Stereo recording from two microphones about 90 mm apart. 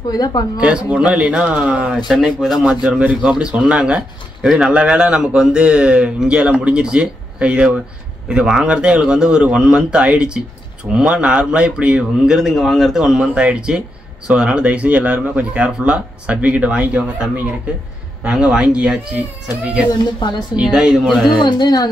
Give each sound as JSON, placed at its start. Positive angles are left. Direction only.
{"t": 0.1, "sound": "speech", "side_deg": 45}
{"t": 0.6, "sound": "speech", "side_deg": -15}
{"t": 20.5, "sound": "speech", "side_deg": -5}
{"t": 21.4, "sound": "speech", "side_deg": 55}